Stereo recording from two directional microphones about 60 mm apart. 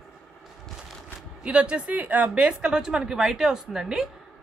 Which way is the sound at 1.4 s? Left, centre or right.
Centre.